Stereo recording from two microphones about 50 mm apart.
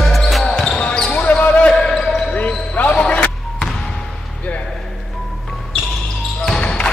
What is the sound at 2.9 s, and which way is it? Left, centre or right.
Music, left.